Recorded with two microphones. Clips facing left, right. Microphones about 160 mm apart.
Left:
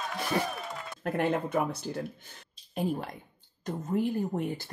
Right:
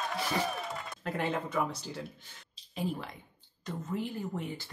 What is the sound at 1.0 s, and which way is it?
A woman's voice, 50° left (ahead or behind).